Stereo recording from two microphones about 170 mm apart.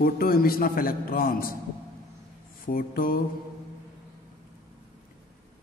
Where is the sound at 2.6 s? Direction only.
55° left (ahead or behind).